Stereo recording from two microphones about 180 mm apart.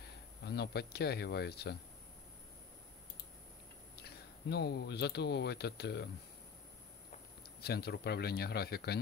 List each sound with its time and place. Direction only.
0.5 s speech: 65° left (ahead or behind)
4.0 s speech: 65° left (ahead or behind)
7.6 s speech: 60° left (ahead or behind)